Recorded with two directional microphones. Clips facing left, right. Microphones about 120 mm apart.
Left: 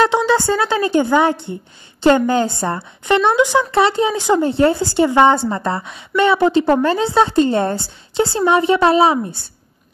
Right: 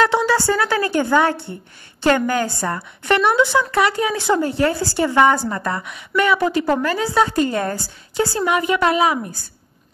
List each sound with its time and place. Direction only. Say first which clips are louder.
0.0 s a woman's voice: left 2 dB; 20° left (ahead or behind)